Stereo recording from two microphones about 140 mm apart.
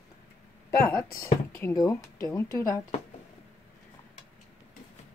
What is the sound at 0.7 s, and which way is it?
Speech, 20° left (ahead or behind).